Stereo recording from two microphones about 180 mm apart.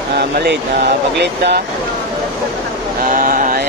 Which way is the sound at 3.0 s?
50° right (ahead or behind).